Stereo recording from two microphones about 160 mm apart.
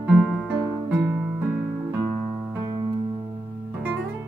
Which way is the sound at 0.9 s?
15° right (ahead or behind).